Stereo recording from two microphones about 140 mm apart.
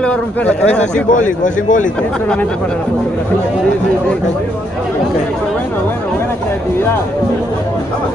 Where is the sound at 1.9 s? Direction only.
5° left (ahead or behind).